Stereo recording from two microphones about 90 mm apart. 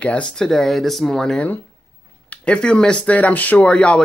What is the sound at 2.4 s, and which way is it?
Speech, 10° left (ahead or behind).